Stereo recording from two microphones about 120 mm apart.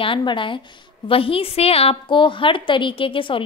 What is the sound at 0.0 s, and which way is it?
A woman's voice, 45° left (ahead or behind).